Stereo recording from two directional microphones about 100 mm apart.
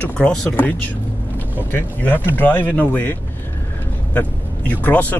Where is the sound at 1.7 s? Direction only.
20° left (ahead or behind).